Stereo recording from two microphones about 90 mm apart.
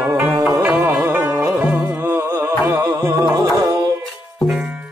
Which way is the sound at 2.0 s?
25° right (ahead or behind).